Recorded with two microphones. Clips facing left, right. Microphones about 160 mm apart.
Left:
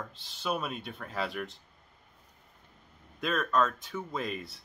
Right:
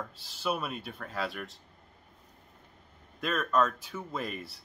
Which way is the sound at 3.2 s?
Centre (ahead or behind).